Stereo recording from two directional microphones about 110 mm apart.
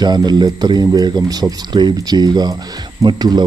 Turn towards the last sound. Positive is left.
turn(degrees=-40)  # may be behind; listen again after turning